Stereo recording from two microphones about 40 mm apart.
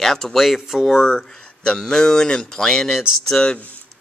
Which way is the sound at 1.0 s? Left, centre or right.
Centre.